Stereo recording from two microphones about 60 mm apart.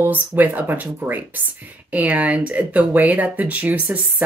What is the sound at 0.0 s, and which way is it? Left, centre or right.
Speech, right.